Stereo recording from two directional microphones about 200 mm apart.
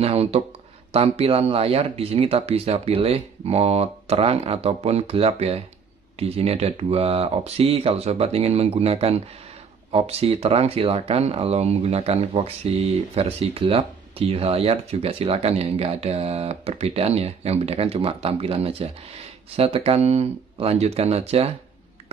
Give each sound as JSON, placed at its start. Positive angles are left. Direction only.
{"t": 0.0, "sound": "speech", "side_deg": -30}